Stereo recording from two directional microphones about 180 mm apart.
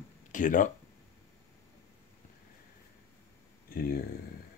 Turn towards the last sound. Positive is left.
turn(degrees=55)  # may be behind; listen again after turning